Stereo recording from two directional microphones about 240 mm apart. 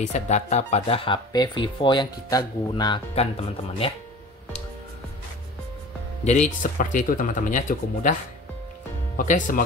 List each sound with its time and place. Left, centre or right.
0.0 s speech: left
6.2 s speech: left